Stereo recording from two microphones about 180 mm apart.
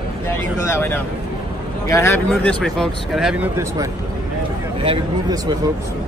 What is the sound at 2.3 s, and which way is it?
Speech, 5° left (ahead or behind).